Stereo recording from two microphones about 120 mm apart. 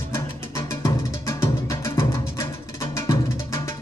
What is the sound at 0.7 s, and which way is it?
Music, 25° left (ahead or behind).